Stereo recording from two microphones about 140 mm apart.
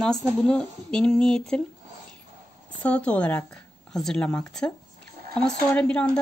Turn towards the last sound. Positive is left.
turn(degrees=10)  # may be behind; listen again after turning